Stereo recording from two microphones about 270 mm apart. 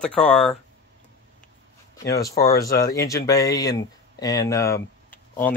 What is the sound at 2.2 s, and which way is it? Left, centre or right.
Speech, left.